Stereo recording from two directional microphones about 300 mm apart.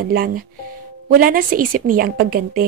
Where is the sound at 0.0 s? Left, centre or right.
Right.